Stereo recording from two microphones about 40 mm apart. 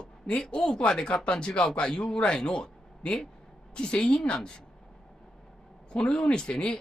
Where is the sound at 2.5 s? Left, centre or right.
Left.